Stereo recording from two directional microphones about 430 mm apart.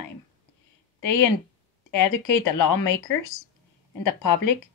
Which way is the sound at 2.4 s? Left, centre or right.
Left.